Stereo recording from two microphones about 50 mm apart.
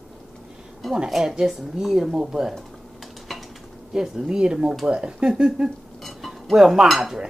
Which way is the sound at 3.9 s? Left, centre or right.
Centre.